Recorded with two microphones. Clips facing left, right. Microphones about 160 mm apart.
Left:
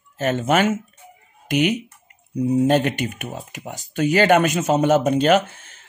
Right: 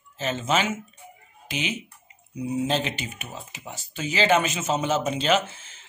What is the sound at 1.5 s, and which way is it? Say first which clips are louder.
Speech: left 11 dB; 45° left (ahead or behind).